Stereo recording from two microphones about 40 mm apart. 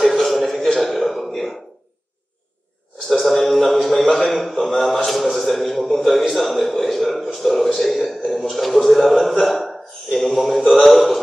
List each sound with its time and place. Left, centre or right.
0.0 s music: centre
3.1 s a sound: centre
3.8 s a man's voice: centre